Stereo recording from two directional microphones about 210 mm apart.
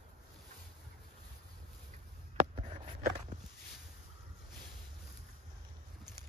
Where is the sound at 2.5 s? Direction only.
35° right (ahead or behind).